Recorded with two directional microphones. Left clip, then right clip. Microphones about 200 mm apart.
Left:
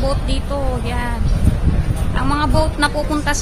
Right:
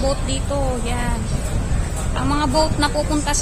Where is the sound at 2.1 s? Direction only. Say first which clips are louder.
Left 1 dB; 15° left (ahead or behind).